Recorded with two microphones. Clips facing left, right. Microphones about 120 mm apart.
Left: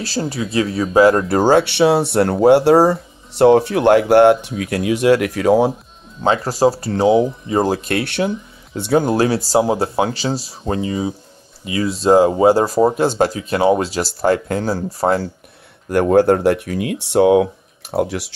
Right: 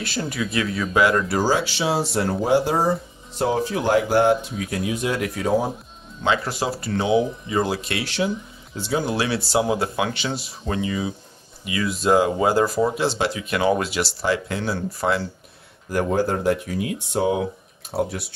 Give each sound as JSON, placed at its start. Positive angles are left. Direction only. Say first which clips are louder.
{"t": 0.0, "sound": "speech", "louder": "left 4 dB", "side_deg": 35}
{"t": 1.3, "sound": "speech", "louder": "left 8 dB", "side_deg": 60}
{"t": 6.2, "sound": "speech", "louder": "left 8 dB", "side_deg": 40}
{"t": 15.9, "sound": "speech", "louder": "left 9 dB", "side_deg": 65}